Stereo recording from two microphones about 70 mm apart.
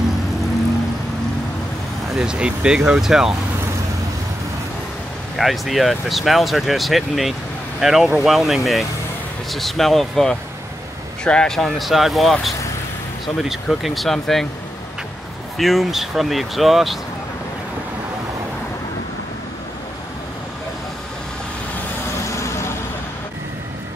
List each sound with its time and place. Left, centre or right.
2.1 s speech: centre
5.4 s speech: centre
15.5 s speech: centre
22.3 s vehicle: left